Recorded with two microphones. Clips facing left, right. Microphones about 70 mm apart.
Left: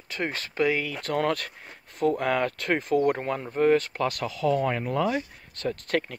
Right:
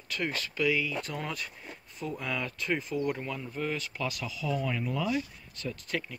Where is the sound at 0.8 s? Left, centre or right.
Left.